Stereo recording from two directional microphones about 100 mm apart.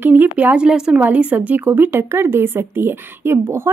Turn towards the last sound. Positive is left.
turn(degrees=-25)  # may be behind; listen again after turning